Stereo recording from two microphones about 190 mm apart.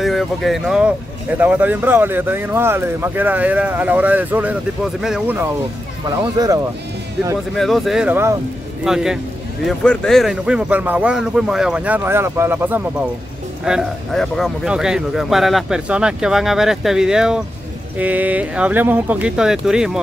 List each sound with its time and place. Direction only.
0.0 s speech: centre (ahead or behind)
6.3 s speech: 20° right (ahead or behind)
7.5 s speech: centre (ahead or behind)